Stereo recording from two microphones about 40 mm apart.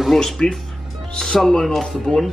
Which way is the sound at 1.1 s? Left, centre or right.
Centre.